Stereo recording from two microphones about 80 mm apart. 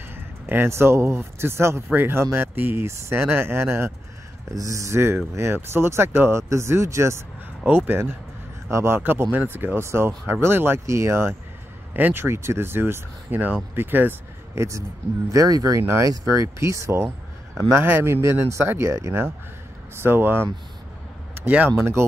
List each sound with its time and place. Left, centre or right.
0.1 s speech: right
4.6 s speech: right
7.6 s speech: right
8.6 s speech: right
14.5 s speech: right
15.8 s speech: right